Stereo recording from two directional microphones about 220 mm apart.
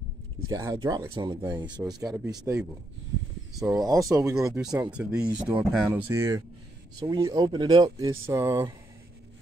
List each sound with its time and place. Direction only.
0.5 s speech: 15° right (ahead or behind)
4.9 s speech: 5° right (ahead or behind)